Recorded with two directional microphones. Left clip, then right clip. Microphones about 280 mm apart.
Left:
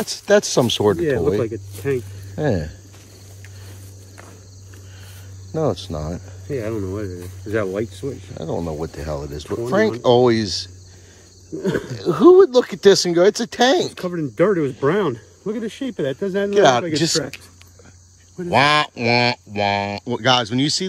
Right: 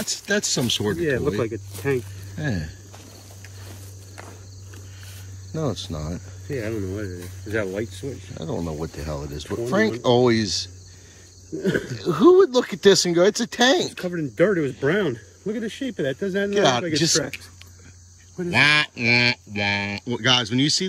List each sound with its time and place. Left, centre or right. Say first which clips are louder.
0.0 s speech: left 8 dB; centre
5.5 s speech: left 6 dB; centre
6.4 s speech: left 3 dB; centre
8.4 s speech: left 4 dB; centre
14.0 s speech: left 1 dB; centre
16.4 s speech: left 6 dB; centre
18.4 s speech: left 2 dB; centre